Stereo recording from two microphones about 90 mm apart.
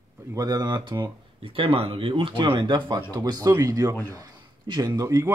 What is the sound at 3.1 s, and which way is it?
Speech, 45° right (ahead or behind).